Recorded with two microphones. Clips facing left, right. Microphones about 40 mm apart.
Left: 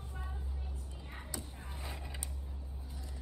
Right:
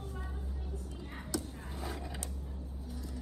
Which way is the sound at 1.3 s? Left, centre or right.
Left.